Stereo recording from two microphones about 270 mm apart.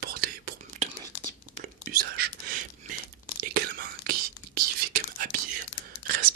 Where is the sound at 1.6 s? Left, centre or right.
Right.